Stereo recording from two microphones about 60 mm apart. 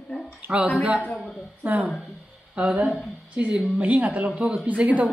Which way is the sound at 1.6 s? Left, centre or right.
Right.